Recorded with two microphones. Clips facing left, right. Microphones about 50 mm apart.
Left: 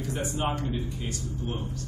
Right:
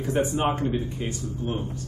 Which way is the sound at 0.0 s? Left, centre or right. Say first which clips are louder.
Right 6 dB; right.